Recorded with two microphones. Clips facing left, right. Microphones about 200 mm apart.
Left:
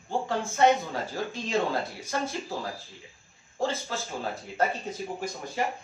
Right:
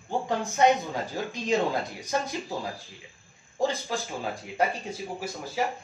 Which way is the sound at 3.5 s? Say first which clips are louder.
Right 2 dB; 15° right (ahead or behind).